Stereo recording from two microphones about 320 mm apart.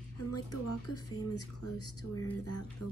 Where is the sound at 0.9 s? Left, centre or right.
Left.